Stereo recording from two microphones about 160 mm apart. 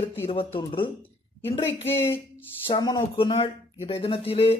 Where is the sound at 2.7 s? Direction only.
25° left (ahead or behind).